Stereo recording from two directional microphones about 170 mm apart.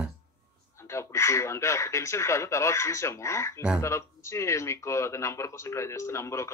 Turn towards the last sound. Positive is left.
turn(degrees=15)  # may be behind; listen again after turning